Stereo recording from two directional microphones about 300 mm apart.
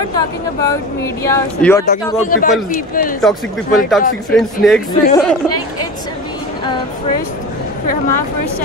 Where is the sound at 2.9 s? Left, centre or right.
Left.